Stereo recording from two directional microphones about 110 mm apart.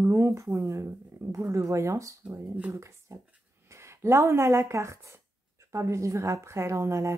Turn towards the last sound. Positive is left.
turn(degrees=-25)  # may be behind; listen again after turning